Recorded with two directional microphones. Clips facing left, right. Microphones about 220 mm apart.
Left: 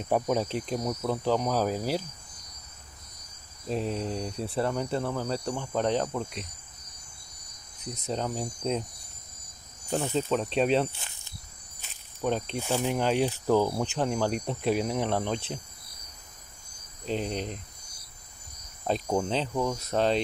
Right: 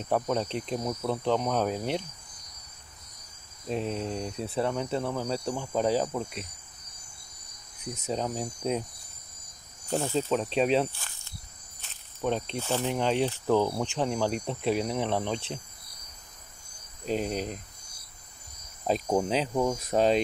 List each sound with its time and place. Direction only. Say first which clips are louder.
0.1 s speech: left 1 dB; 10° left (ahead or behind)
3.6 s speech: left 1 dB; centre (ahead or behind)
7.8 s cricket: right 1 dB; 5° right (ahead or behind)
9.8 s speech: even; centre (ahead or behind)
10.9 s speech: left 1 dB; 20° left (ahead or behind)
12.2 s speech: even; 5° left (ahead or behind)
17.0 s cricket: right 1 dB; 5° right (ahead or behind)
19.0 s cricket: right 2 dB; 10° right (ahead or behind)